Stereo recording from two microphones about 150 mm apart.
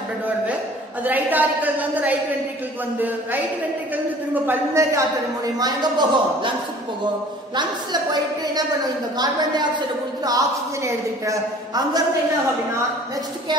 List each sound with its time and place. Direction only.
1.0 s a woman's voice: 10° right (ahead or behind)
3.9 s a woman's voice: 10° right (ahead or behind); by 6.5 s 30° right (ahead or behind)
7.5 s a woman's voice: 30° right (ahead or behind)